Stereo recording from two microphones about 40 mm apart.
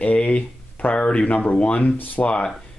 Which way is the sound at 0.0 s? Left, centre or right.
Left.